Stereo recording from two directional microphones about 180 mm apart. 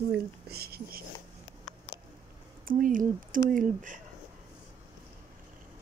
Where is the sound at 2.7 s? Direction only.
50° right (ahead or behind).